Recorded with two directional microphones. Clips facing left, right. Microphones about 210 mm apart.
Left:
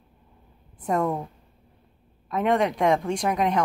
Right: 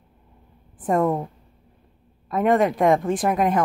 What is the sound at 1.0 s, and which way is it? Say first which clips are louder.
Speech: right 4 dB; 30° right (ahead or behind).